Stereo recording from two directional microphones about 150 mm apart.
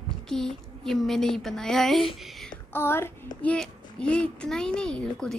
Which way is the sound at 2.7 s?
15° left (ahead or behind).